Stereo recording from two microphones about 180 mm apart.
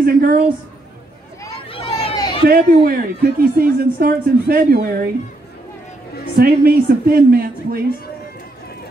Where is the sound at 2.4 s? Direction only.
55° right (ahead or behind).